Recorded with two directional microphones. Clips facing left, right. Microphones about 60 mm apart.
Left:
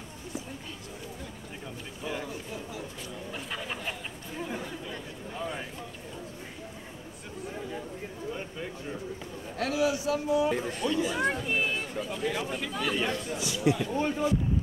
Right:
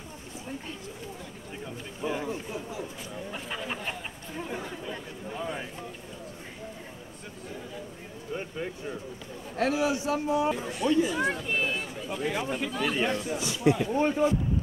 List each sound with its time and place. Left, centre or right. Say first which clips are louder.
2.0 s speech: right 4 dB; right
3.4 s speech: right 1 dB; centre
9.6 s speech: right 2 dB; right
11.1 s speech: even; centre
13.0 s speech: right 2 dB; right